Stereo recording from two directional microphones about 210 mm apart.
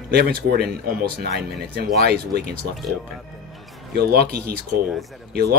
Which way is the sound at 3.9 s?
45° right (ahead or behind).